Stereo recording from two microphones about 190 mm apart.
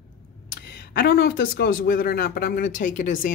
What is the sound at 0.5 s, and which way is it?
A woman's voice, 55° left (ahead or behind).